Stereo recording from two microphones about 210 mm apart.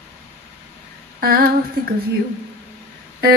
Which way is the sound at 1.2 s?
45° right (ahead or behind).